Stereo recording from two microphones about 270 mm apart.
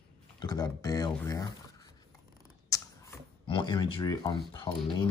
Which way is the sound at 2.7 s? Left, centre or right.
Centre.